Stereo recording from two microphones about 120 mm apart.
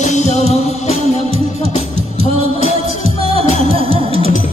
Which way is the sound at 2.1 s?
50° right (ahead or behind).